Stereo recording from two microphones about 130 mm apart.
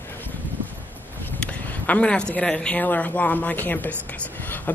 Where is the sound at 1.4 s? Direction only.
10° left (ahead or behind).